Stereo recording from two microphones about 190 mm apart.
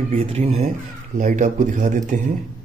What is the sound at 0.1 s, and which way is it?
Speech, 30° right (ahead or behind).